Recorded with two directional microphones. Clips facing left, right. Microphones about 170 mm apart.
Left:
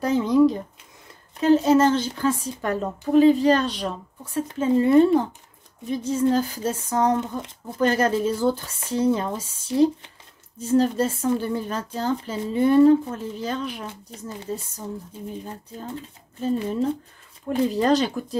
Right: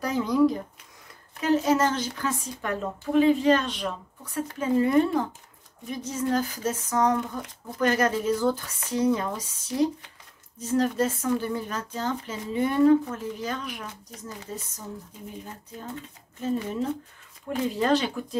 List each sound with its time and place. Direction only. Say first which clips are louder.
0.0 s speech: left 4 dB; 25° left (ahead or behind)
10.6 s speech: left 4 dB; 30° left (ahead or behind)